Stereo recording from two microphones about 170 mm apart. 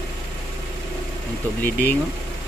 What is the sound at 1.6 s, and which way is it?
Speech, 65° left (ahead or behind).